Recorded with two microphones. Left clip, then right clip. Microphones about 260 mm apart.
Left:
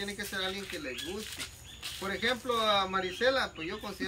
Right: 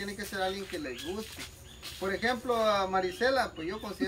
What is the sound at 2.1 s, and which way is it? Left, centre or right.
Speech, centre.